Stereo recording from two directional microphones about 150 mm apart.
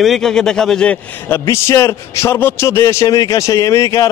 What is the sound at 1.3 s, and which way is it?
A man's voice, 20° left (ahead or behind).